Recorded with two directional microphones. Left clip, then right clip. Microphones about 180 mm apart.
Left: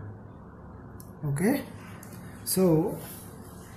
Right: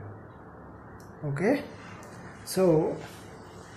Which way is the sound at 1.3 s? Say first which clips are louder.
Right 2 dB; 15° left (ahead or behind).